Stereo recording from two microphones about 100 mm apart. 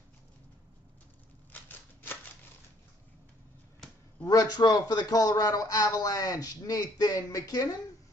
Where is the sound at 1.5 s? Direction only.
20° left (ahead or behind).